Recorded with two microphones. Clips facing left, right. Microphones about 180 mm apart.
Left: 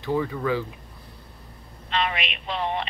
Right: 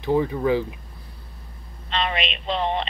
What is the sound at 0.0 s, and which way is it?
Speech, 20° right (ahead or behind).